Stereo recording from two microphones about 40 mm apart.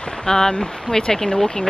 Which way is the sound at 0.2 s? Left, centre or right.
Centre.